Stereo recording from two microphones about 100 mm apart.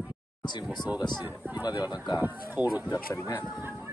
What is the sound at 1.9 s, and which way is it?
Speech, 45° left (ahead or behind).